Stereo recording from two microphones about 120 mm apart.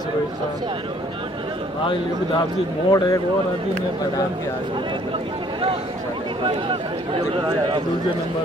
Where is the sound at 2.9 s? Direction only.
30° left (ahead or behind).